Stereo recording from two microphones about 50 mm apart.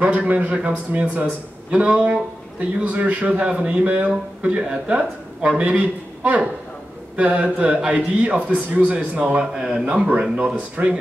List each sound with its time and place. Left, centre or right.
0.0 s a man's voice: right
9.5 s a man's voice: centre